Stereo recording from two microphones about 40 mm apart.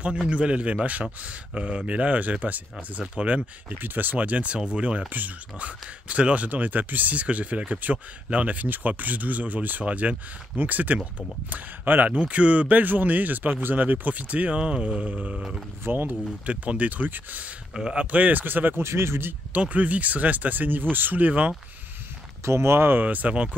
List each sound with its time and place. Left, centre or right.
0.3 s speech: right
3.0 s speech: right
3.6 s speech: right
12.1 s speech: right
15.3 s speech: centre
15.8 s speech: right
16.1 s speech: right
18.4 s speech: right
19.5 s speech: right
22.6 s speech: right
23.0 s speech: right